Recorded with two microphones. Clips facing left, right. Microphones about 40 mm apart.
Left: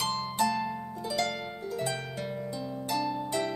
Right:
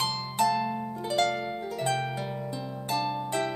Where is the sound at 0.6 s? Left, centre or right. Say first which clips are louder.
Right 3 dB; right.